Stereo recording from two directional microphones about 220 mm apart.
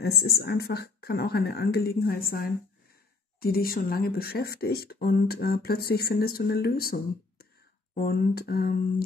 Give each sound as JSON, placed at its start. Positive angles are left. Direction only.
{"t": 0.0, "sound": "speech", "side_deg": 45}